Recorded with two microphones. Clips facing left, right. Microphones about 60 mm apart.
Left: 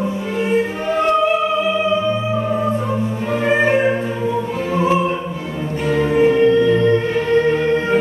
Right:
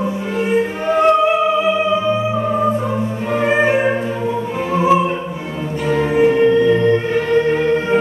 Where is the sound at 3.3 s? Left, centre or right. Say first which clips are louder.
Right 1 dB; centre.